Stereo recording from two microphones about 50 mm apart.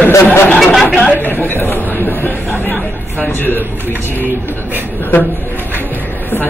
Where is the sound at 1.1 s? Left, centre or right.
Left.